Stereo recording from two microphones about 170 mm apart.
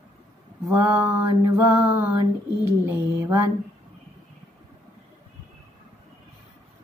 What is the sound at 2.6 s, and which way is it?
Speech, 10° right (ahead or behind).